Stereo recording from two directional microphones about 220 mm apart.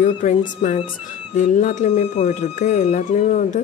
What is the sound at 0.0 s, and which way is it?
Speech, 35° left (ahead or behind).